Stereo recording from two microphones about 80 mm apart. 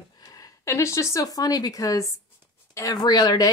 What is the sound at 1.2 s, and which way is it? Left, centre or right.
Speech, left.